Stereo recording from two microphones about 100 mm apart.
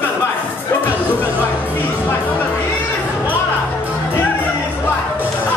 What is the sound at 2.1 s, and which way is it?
Music, 20° left (ahead or behind).